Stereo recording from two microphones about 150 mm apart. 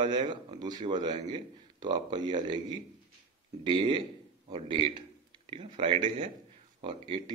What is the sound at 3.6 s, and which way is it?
A man's voice, 30° right (ahead or behind).